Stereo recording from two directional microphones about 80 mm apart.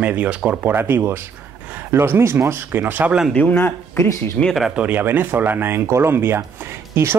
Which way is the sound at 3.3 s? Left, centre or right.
Left.